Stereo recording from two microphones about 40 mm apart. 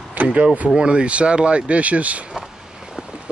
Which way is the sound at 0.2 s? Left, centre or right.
Right.